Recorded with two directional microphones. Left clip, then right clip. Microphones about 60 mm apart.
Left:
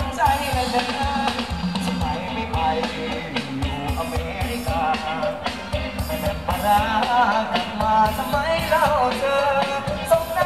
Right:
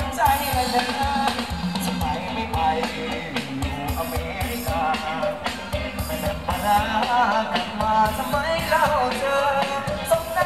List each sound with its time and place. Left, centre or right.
0.2 s music: right
4.7 s music: centre
6.2 s music: centre